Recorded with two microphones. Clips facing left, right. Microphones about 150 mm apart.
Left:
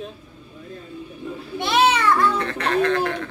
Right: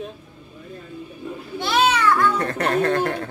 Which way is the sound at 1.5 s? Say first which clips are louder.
Left 1 dB; 25° left (ahead or behind).